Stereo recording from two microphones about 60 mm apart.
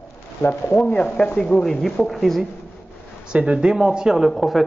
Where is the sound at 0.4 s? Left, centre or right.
Left.